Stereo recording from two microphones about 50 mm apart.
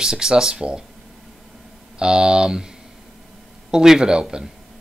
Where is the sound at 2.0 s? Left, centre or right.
Centre.